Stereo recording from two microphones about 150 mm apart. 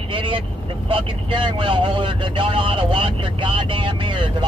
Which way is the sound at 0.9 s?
35° right (ahead or behind).